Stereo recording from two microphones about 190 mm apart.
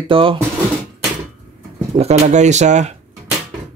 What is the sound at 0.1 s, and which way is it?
Speech, 30° right (ahead or behind).